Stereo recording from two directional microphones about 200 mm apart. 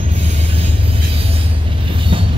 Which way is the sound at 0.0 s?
30° right (ahead or behind).